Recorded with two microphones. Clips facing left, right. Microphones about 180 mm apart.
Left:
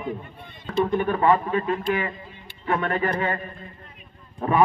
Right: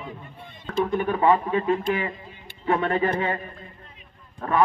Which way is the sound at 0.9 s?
5° right (ahead or behind).